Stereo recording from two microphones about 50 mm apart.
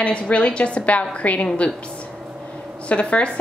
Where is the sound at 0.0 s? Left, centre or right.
Left.